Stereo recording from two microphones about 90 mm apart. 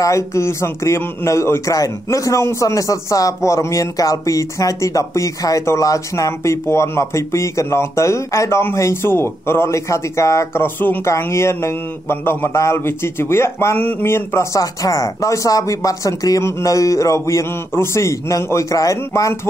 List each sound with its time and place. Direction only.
0.0 s a man's voice: 35° left (ahead or behind)